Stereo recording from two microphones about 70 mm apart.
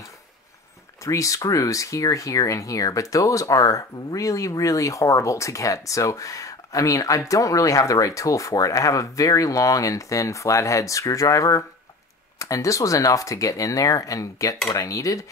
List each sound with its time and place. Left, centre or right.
1.0 s speech: left